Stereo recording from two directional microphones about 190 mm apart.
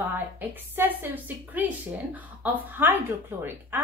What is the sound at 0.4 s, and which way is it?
A woman's voice, 10° right (ahead or behind).